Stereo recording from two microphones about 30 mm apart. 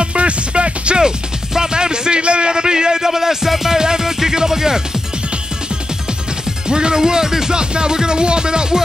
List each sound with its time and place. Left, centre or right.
0.0 s music: right
1.0 s speech: right
6.7 s speech: right